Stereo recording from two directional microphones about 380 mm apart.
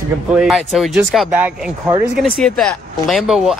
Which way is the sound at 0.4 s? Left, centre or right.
Centre.